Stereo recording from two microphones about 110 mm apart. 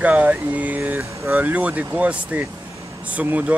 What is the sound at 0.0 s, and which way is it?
Speech, 15° right (ahead or behind).